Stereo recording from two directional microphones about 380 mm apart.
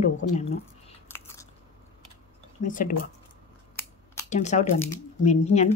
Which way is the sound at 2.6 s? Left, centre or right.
Left.